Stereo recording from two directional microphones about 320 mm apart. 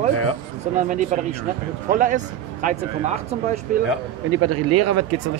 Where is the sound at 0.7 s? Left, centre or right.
Right.